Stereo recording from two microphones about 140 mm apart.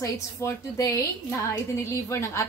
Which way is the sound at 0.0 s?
20° left (ahead or behind).